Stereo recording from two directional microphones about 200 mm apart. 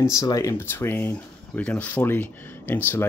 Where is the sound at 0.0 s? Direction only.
15° left (ahead or behind).